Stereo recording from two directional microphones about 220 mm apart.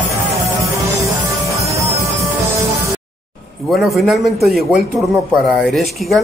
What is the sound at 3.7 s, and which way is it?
A man's voice, centre (ahead or behind).